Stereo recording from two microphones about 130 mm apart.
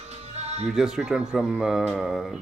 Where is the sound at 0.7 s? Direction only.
5° right (ahead or behind).